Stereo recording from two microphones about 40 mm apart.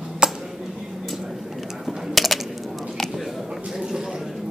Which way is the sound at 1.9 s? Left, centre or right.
Centre.